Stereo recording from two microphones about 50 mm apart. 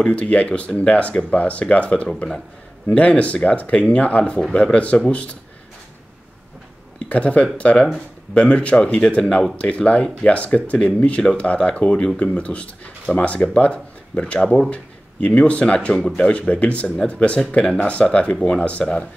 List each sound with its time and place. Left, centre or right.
0.0 s speech: left
7.1 s speech: left
16.8 s speech: centre
17.1 s speech: left